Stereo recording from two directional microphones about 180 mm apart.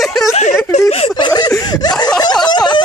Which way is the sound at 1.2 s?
25° left (ahead or behind).